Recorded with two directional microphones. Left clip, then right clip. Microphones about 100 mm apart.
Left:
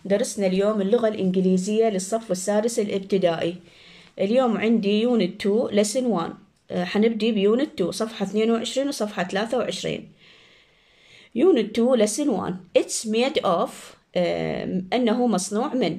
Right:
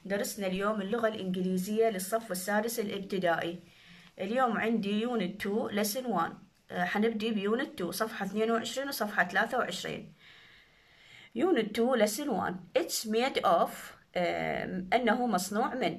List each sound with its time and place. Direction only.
0.1 s speech: 40° left (ahead or behind)
11.3 s speech: 25° left (ahead or behind)